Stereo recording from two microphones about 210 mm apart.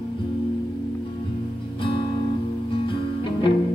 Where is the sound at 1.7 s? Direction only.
25° left (ahead or behind).